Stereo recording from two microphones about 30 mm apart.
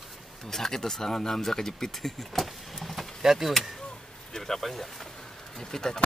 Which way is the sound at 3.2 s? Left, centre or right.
Centre.